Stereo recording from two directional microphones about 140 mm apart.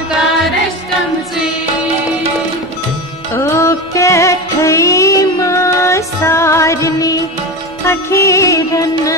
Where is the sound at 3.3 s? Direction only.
20° left (ahead or behind).